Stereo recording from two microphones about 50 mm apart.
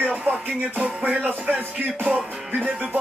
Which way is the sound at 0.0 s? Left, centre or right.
Right.